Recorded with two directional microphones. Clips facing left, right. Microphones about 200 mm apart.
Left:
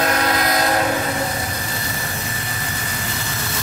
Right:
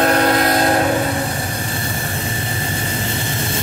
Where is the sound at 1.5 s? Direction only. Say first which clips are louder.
Right 3 dB; 30° right (ahead or behind).